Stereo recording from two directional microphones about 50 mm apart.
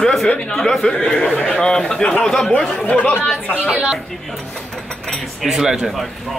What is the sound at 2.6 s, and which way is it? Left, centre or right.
Speech, left.